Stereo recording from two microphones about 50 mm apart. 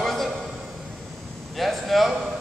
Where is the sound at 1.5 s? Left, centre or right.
Centre.